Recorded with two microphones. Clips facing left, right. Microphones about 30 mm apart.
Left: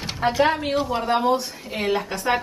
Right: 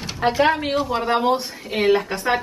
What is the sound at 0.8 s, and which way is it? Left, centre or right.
Speech, right.